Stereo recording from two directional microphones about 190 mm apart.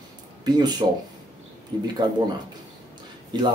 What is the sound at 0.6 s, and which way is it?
Speech, 20° right (ahead or behind).